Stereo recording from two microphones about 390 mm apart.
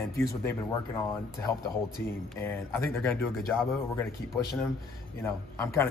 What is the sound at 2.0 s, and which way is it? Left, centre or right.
Speech, centre.